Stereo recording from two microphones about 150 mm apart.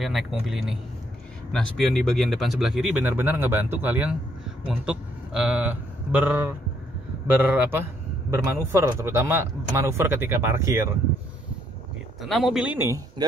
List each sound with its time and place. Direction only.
0.0 s speech: centre (ahead or behind); by 11.0 s 20° right (ahead or behind)
12.2 s speech: centre (ahead or behind)
12.7 s speech: 15° right (ahead or behind)